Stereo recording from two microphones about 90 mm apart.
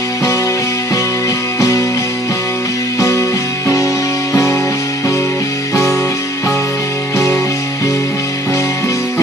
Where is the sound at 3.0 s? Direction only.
35° left (ahead or behind).